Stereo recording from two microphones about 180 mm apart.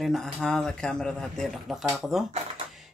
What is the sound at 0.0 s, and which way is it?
Speech, centre (ahead or behind).